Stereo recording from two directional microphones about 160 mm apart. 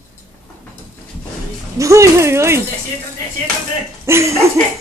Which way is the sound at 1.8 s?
20° right (ahead or behind).